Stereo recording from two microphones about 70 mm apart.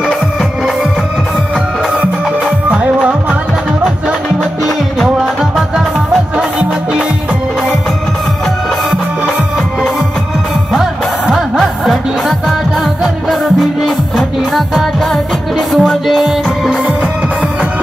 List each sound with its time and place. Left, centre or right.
2.7 s music: centre
4.6 s music: centre
10.7 s music: centre
13.8 s music: centre